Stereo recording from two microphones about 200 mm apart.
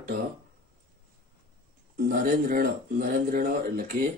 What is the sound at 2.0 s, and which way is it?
Speech, 45° right (ahead or behind).